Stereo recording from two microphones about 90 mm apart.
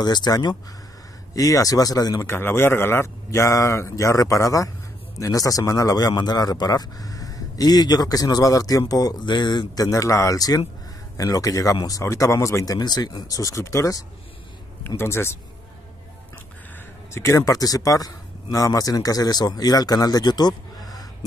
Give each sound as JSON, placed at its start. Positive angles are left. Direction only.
{"t": 0.0, "sound": "a man's voice", "side_deg": 50}
{"t": 1.3, "sound": "a man's voice", "side_deg": 40}
{"t": 2.2, "sound": "a man's voice", "side_deg": 25}
{"t": 9.2, "sound": "speech", "side_deg": 60}
{"t": 9.8, "sound": "a man's voice", "side_deg": 35}
{"t": 12.0, "sound": "a man's voice", "side_deg": 35}
{"t": 15.0, "sound": "a man's voice", "side_deg": 30}
{"t": 17.1, "sound": "a man's voice", "side_deg": 30}
{"t": 17.5, "sound": "a man's voice", "side_deg": 45}